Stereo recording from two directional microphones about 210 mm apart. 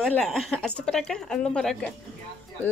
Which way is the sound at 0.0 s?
5° left (ahead or behind).